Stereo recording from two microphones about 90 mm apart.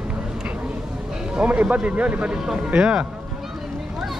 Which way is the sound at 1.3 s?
15° right (ahead or behind).